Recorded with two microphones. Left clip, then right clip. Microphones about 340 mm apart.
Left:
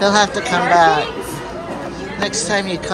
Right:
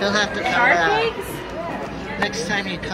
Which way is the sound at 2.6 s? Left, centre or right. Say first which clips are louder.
Left 5 dB; centre.